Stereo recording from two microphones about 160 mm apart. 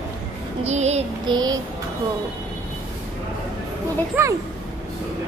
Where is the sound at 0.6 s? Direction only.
45° right (ahead or behind).